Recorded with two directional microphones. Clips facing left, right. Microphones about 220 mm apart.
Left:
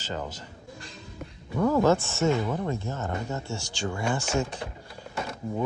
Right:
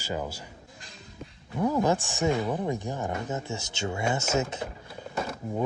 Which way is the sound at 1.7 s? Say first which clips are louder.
Left 4 dB; 15° right (ahead or behind).